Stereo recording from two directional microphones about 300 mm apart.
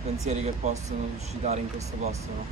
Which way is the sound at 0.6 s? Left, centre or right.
Right.